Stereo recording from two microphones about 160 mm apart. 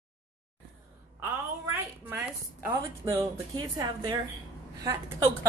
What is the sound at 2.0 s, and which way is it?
A woman's voice, 15° right (ahead or behind).